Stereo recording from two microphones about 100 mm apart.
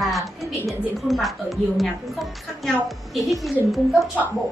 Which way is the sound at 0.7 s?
Centre (ahead or behind).